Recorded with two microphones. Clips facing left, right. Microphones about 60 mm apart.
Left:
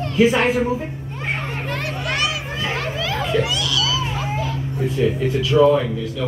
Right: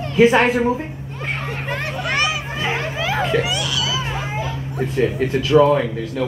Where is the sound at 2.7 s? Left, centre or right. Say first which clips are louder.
Right 2 dB; centre.